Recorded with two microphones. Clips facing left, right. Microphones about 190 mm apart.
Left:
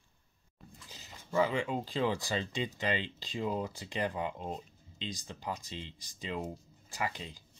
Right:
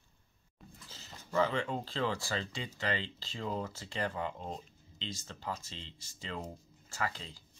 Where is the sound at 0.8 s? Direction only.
15° left (ahead or behind).